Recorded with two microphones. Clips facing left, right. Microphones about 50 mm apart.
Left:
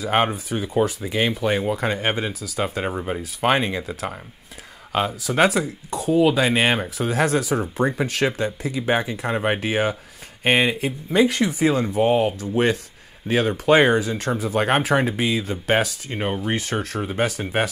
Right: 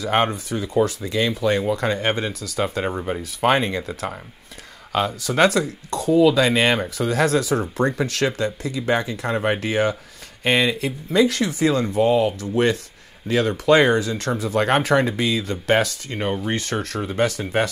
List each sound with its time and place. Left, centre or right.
0.0 s speech: centre
0.8 s speech: left
1.8 s speech: centre
5.3 s speech: centre
12.0 s speech: left
12.4 s speech: centre